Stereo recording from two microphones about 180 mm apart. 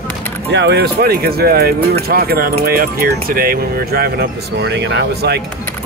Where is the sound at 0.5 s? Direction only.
70° right (ahead or behind).